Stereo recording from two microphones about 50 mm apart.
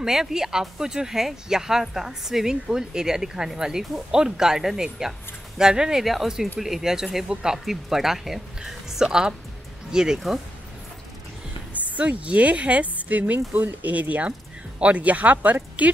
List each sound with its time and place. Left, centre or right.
0.0 s speech: centre
11.7 s a woman's voice: right